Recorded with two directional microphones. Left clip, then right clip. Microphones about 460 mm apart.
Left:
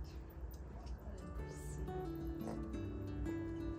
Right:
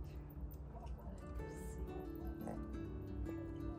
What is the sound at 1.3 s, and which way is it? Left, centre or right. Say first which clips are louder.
Music: right 2 dB; centre.